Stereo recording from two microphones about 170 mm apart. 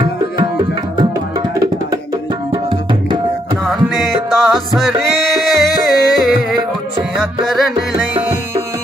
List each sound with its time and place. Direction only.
2.5 s tabla: 25° right (ahead or behind)
4.3 s music: centre (ahead or behind)